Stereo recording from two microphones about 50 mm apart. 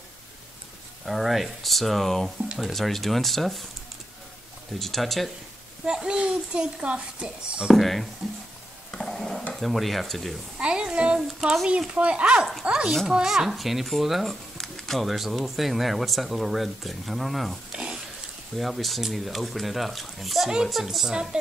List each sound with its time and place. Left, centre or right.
1.0 s speech: centre
4.7 s speech: centre
5.9 s a child's voice: centre
7.7 s speech: centre
9.0 s stir: centre
9.5 s speech: centre
10.6 s a sound: centre
11.1 s a woman's voice: centre
11.9 s speech: right; by 14.3 s centre
14.6 s a sound: centre
15.0 s speech: centre
17.7 s a sound: centre
18.6 s speech: centre
20.4 s a child's voice: centre